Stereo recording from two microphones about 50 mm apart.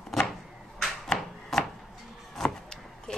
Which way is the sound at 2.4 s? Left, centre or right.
Centre.